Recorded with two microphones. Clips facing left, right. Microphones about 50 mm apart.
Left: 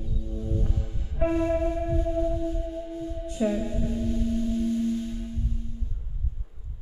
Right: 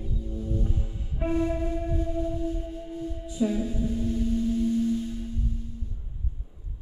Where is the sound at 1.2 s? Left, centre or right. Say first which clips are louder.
Left 3 dB; centre.